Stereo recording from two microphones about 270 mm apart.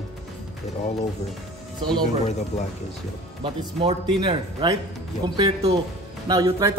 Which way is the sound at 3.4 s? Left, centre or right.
Centre.